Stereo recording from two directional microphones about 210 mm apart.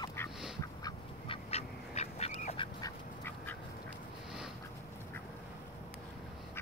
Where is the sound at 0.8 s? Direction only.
25° left (ahead or behind).